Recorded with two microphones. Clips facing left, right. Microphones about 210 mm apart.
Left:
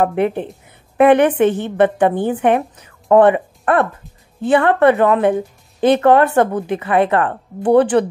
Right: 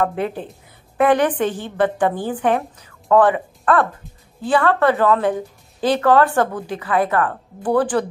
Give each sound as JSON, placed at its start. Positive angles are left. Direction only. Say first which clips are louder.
{"t": 0.0, "sound": "a woman's voice", "louder": "left 5 dB", "side_deg": 20}